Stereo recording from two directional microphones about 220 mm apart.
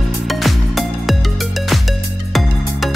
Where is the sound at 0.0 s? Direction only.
Centre (ahead or behind).